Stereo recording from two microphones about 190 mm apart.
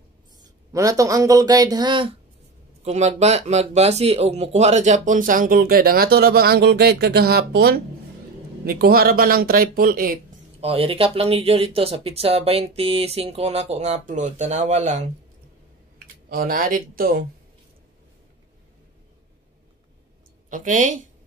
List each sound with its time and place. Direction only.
0.7 s speech: 15° right (ahead or behind)
2.8 s speech: 35° right (ahead or behind)
10.6 s speech: 30° right (ahead or behind)
16.3 s speech: 50° right (ahead or behind)
20.4 s speech: 45° right (ahead or behind)